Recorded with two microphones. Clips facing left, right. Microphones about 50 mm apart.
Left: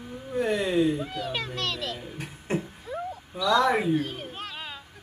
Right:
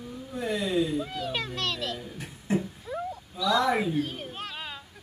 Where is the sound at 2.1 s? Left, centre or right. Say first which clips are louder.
Right 2 dB; left.